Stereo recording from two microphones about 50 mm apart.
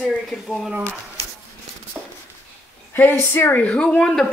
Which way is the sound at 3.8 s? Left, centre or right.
Centre.